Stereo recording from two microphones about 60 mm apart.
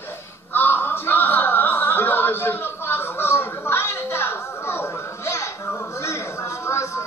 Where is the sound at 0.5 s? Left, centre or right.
Left.